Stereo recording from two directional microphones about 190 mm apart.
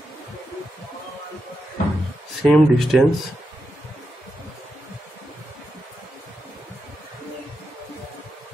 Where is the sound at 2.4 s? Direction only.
Centre (ahead or behind).